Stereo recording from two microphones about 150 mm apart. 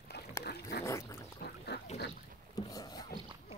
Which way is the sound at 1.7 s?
90° left.